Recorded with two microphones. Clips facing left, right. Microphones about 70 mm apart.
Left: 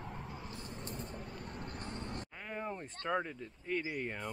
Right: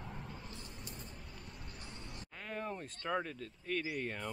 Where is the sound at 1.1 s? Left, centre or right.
Left.